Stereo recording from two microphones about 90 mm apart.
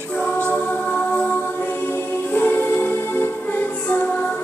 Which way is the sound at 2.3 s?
20° left (ahead or behind).